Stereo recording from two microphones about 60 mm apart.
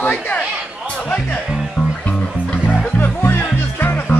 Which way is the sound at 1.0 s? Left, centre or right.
Centre.